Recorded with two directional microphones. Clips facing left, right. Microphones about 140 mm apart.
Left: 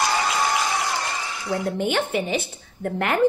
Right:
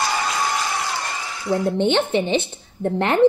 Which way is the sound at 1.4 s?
25° right (ahead or behind).